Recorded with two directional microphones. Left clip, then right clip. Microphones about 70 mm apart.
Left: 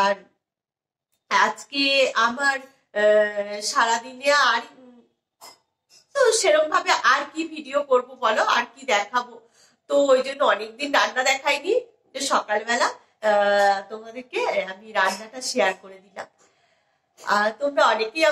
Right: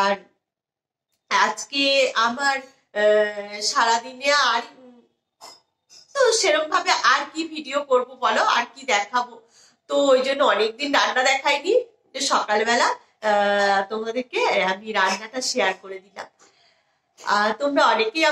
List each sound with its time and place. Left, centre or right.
0.0 s a woman's voice: right
6.1 s a woman's voice: right
15.3 s speech: centre
15.6 s a woman's voice: right